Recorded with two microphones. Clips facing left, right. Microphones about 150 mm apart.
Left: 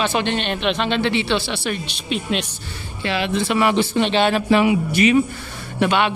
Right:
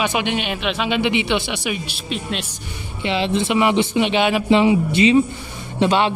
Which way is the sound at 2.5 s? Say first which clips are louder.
Right 1 dB; 15° right (ahead or behind).